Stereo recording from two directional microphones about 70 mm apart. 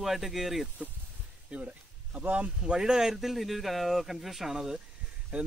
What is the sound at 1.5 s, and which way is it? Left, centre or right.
Speech, centre.